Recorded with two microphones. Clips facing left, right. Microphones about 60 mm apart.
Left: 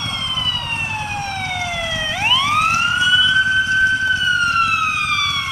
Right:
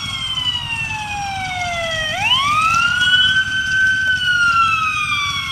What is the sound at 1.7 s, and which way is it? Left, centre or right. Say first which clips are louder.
Police car: right 2 dB; centre.